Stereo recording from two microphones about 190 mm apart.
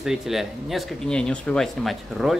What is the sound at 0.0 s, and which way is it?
Speech, centre (ahead or behind).